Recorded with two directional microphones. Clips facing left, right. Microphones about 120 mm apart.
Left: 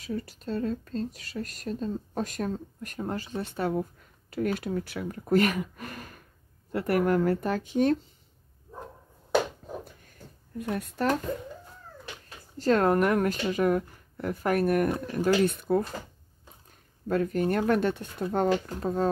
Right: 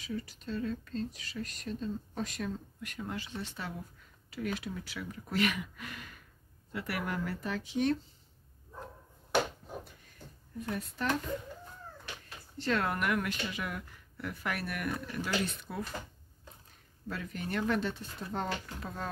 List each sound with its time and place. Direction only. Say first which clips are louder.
0.0 s speech: left 5 dB; 40° left (ahead or behind)
10.7 s speech: left 7 dB; 50° left (ahead or behind)
12.5 s speech: left 9 dB; 40° left (ahead or behind)
17.1 s speech: left 12 dB; 45° left (ahead or behind)